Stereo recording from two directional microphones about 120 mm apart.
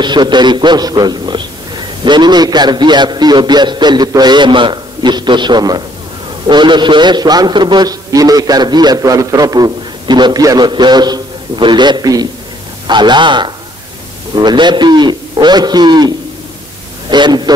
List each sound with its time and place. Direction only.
0.0 s a man's voice: 40° right (ahead or behind)
17.1 s a man's voice: 35° right (ahead or behind)